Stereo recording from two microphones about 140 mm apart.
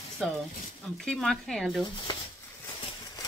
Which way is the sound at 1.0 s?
5° left (ahead or behind).